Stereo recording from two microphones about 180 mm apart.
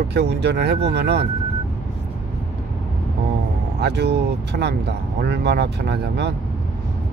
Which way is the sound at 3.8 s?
70° right (ahead or behind).